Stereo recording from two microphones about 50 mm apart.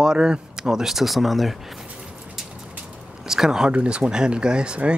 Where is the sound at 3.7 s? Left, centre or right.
Right.